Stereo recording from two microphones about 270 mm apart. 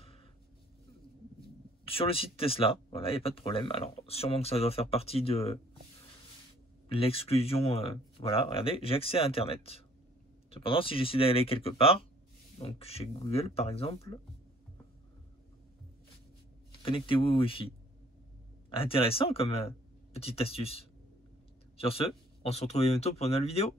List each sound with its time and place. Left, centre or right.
1.9 s speech: left
6.9 s speech: left
16.8 s speech: centre